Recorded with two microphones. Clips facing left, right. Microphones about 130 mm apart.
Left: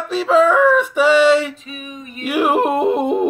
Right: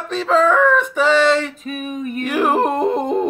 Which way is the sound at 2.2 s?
10° left (ahead or behind).